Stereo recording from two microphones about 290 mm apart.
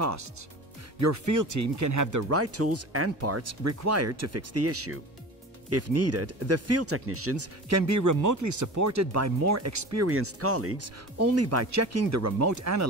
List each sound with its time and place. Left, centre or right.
0.0 s speech: right
2.3 s speech: right